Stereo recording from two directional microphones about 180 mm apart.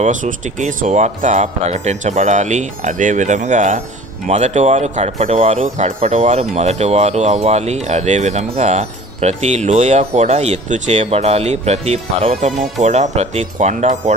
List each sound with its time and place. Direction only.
0.0 s speech: 45° right (ahead or behind)